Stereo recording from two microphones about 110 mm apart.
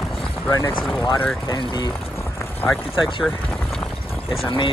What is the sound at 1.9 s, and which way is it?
Run, 20° left (ahead or behind).